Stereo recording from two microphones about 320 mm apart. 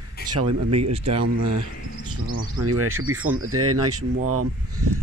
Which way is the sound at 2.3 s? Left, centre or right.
Right.